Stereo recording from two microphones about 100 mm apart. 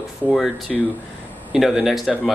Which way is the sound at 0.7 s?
Centre (ahead or behind).